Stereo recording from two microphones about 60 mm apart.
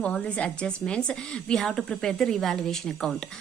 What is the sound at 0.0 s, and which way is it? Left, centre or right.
A woman's voice, left.